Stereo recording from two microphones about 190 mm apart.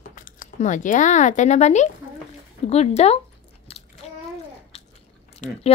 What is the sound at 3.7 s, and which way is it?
Biting, 30° left (ahead or behind).